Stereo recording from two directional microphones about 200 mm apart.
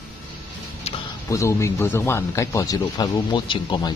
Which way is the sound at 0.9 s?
30° left (ahead or behind).